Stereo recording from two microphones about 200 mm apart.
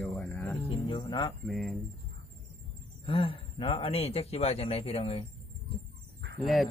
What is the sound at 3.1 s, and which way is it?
Speech, 25° left (ahead or behind).